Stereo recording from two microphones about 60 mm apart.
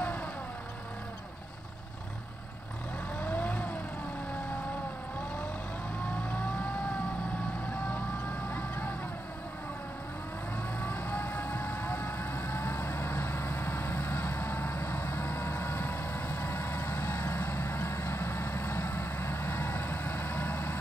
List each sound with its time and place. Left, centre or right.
0.0 s vehicle: left
3.2 s vehicle: left
6.2 s vehicle: left
8.5 s vehicle: left
10.8 s vehicle: left